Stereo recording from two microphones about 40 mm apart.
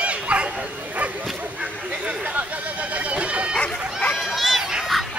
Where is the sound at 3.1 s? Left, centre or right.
Right.